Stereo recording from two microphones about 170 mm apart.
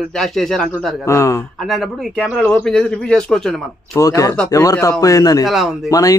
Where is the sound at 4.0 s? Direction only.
20° left (ahead or behind).